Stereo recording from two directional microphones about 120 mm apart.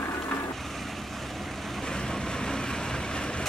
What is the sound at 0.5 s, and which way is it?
Vehicle, centre (ahead or behind).